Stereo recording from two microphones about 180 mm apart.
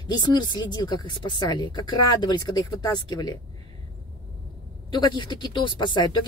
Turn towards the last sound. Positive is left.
turn(degrees=25)  # may be behind; listen again after turning